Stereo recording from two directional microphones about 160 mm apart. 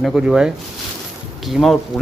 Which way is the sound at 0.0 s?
5° right (ahead or behind).